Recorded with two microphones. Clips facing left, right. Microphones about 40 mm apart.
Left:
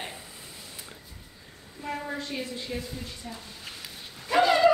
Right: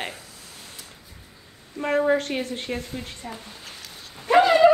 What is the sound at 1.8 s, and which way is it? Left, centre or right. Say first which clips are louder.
A woman's voice: right 12 dB; right.